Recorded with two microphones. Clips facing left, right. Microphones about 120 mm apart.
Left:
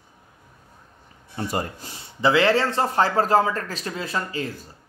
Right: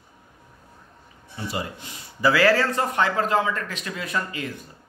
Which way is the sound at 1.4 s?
45° left (ahead or behind).